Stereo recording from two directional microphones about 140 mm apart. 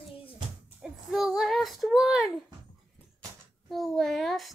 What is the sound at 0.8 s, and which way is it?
Child singing, 5° right (ahead or behind).